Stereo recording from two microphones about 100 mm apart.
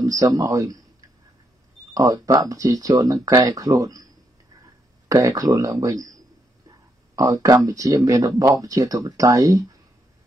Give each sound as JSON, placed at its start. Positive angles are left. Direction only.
{"t": 0.0, "sound": "speech", "side_deg": -35}
{"t": 2.0, "sound": "speech", "side_deg": -35}
{"t": 5.0, "sound": "speech", "side_deg": -35}
{"t": 7.2, "sound": "speech", "side_deg": -35}